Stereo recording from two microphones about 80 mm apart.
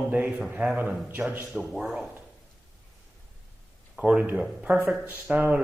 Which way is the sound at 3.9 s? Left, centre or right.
Centre.